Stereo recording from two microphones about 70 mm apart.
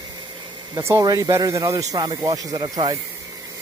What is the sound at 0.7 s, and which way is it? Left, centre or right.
Speech, right.